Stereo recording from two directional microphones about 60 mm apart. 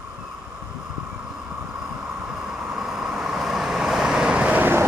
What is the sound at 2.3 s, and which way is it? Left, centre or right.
Vehicle, centre.